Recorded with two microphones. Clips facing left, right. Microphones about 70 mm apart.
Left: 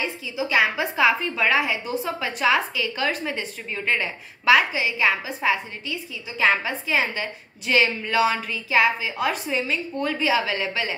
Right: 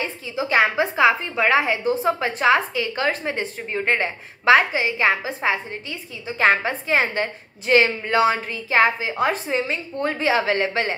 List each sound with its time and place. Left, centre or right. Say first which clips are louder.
0.0 s a woman's voice: right 1 dB; right